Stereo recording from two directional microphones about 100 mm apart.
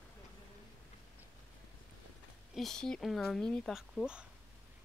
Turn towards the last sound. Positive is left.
turn(degrees=-5)  # may be behind; listen again after turning